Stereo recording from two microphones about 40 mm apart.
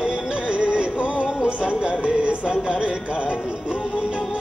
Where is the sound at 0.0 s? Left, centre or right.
Right.